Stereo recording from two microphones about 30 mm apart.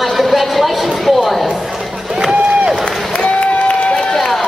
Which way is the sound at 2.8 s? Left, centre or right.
Left.